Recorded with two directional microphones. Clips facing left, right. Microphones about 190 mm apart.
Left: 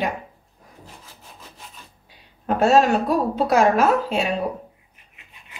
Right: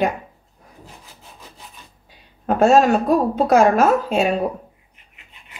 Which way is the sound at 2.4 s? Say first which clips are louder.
Right 3 dB; 45° right (ahead or behind).